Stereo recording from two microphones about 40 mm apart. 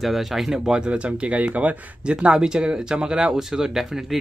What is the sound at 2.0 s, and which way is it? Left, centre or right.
Speech, right.